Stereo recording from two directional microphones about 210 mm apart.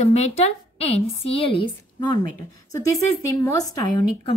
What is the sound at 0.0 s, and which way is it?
A woman's voice, 30° left (ahead or behind).